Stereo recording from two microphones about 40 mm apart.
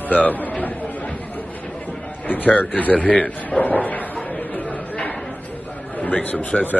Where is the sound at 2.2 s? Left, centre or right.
Left.